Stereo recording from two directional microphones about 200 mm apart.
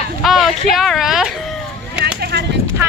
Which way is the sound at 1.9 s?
55° right (ahead or behind).